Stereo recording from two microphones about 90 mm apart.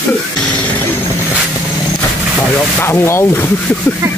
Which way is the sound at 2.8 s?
25° left (ahead or behind).